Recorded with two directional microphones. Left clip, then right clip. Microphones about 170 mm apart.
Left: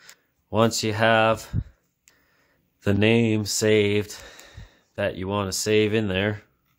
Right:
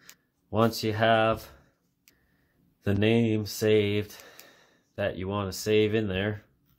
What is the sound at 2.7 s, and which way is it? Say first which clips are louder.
Speech: left 5 dB; 20° left (ahead or behind).